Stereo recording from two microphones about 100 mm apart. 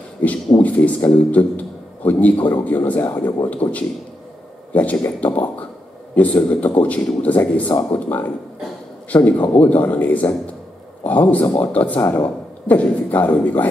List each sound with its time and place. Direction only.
0.2 s speech: 15° left (ahead or behind)
3.6 s speech: 75° left (ahead or behind)
5.0 s speech: 20° left (ahead or behind)